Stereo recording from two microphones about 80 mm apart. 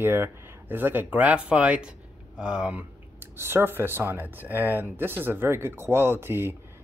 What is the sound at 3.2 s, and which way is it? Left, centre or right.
Speech, right.